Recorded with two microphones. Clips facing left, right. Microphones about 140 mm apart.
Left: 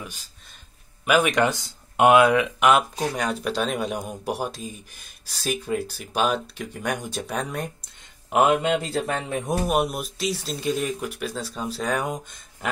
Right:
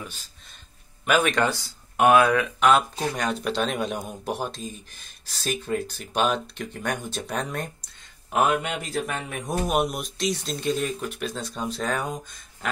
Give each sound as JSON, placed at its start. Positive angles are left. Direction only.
{"t": 0.0, "sound": "speech", "side_deg": 10}
{"t": 8.3, "sound": "a man's voice", "side_deg": 20}
{"t": 9.5, "sound": "speech", "side_deg": 5}